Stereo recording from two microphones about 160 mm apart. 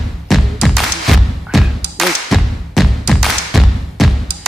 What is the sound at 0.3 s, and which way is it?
Thump, centre (ahead or behind).